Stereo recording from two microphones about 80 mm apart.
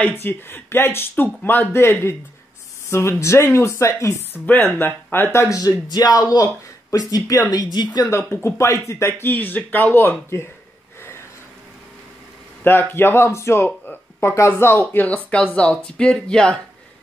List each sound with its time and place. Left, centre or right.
0.0 s speech: left
4.3 s speech: left
6.3 s speech: left
7.6 s speech: left
8.1 s speech: left
12.6 s speech: left; by 16.6 s centre